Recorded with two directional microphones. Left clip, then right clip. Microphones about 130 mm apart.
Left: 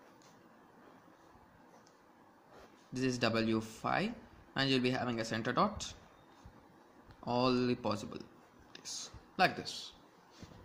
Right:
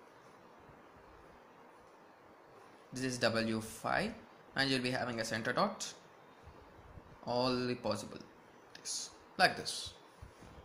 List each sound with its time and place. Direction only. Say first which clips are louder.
2.9 s speech: even; 50° left (ahead or behind)
7.2 s speech: left 2 dB; 50° left (ahead or behind)